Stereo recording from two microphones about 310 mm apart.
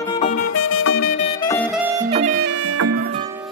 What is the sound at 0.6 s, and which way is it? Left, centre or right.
Music, left.